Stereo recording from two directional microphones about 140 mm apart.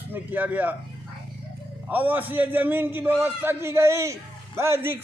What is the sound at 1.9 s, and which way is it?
A man's voice, 15° right (ahead or behind).